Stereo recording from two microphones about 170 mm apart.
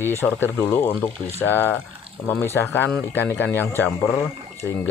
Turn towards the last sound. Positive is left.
turn(degrees=0)  # may be behind; listen again after turning